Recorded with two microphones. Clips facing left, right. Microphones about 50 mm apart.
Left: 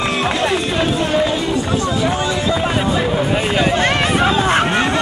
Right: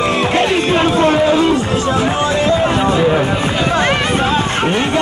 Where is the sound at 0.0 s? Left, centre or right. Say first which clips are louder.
Right 4 dB; right.